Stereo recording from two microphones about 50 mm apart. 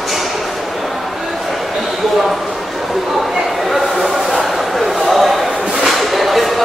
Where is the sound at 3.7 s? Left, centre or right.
Centre.